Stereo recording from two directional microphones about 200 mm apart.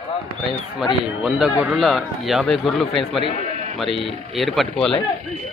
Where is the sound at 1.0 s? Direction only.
5° right (ahead or behind).